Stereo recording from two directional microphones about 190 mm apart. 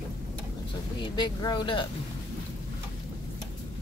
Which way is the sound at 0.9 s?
25° left (ahead or behind).